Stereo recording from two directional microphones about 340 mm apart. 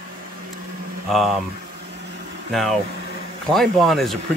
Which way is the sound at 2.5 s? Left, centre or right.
Centre.